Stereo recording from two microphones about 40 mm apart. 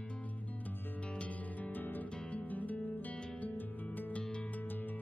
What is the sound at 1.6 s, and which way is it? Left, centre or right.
Music, left.